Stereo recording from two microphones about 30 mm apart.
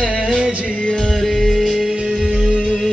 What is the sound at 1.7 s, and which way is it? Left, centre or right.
Music, right.